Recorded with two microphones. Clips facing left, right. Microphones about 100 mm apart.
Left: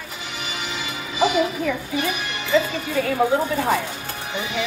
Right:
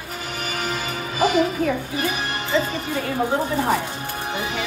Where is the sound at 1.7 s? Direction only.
35° right (ahead or behind).